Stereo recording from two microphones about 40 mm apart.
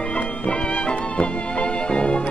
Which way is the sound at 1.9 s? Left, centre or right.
Left.